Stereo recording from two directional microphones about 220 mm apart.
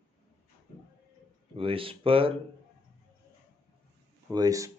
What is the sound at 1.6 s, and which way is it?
Speech, 25° right (ahead or behind).